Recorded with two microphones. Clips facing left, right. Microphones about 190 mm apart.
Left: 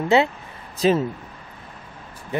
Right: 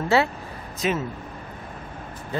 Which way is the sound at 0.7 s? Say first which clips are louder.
Left 7 dB; 30° left (ahead or behind).